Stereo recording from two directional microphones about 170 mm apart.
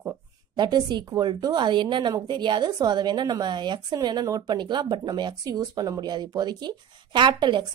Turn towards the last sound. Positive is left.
turn(degrees=-25)  # may be behind; listen again after turning